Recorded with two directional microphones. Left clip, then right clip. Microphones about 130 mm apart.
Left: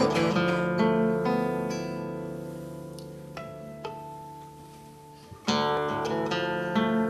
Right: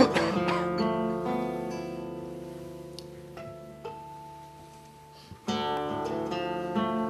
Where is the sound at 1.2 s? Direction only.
10° left (ahead or behind).